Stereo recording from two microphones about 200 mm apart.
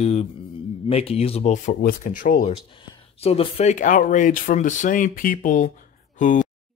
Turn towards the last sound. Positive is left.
turn(degrees=40)  # may be behind; listen again after turning